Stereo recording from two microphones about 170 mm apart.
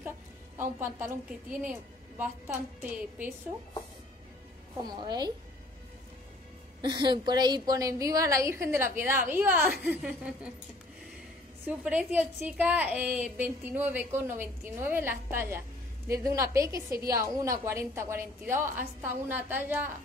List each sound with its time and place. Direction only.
0.6 s a woman's voice: 15° right (ahead or behind)
4.8 s a woman's voice: 25° right (ahead or behind)
6.8 s a woman's voice: 25° right (ahead or behind); by 10.5 s 5° right (ahead or behind)
11.6 s a woman's voice: 5° right (ahead or behind)